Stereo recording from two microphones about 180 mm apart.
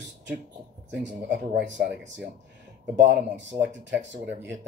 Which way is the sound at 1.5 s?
70° right (ahead or behind).